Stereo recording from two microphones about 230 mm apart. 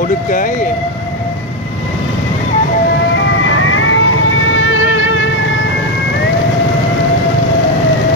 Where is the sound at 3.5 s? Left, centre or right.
Left.